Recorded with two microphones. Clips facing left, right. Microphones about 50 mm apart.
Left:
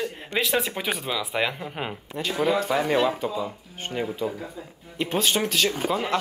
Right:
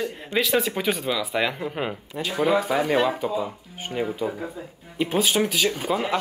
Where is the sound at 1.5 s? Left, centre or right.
Centre.